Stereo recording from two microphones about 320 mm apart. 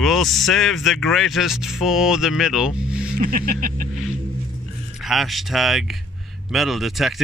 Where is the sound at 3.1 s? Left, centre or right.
Right.